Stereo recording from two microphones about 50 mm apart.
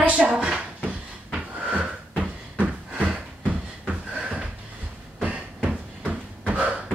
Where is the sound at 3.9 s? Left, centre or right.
Right.